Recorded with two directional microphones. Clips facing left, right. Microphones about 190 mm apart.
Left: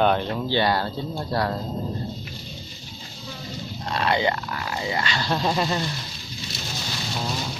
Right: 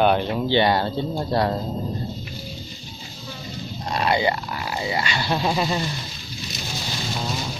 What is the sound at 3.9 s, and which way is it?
Speech, 10° right (ahead or behind).